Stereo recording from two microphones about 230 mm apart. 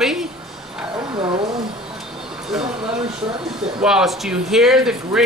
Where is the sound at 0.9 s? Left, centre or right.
Centre.